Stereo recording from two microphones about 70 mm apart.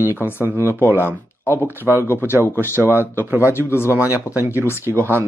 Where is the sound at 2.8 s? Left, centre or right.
Right.